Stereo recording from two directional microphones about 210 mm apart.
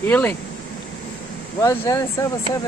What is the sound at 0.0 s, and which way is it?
Speech, 10° left (ahead or behind).